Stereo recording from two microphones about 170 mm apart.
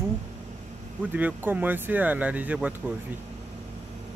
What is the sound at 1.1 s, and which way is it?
Speech, 10° right (ahead or behind).